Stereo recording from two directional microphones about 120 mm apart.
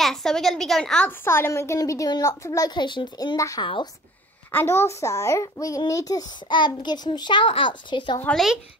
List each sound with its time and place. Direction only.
0.0 s a woman's voice: 5° left (ahead or behind)
1.2 s a child's voice: 20° left (ahead or behind); by 3.3 s 40° left (ahead or behind)
3.3 s a child's voice: 25° left (ahead or behind)
3.6 s speech: 45° left (ahead or behind)
4.5 s a child's voice: 20° left (ahead or behind); by 8.2 s 40° left (ahead or behind)